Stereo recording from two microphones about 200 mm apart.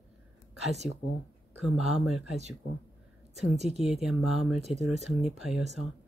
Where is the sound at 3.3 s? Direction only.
35° right (ahead or behind).